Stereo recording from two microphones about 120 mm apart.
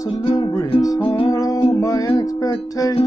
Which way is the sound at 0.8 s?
35° left (ahead or behind).